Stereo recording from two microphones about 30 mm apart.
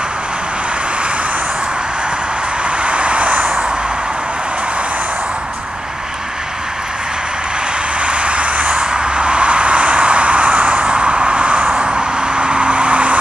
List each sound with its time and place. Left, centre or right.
2.8 s vehicle: right
8.0 s vehicle: right
8.7 s vehicle: right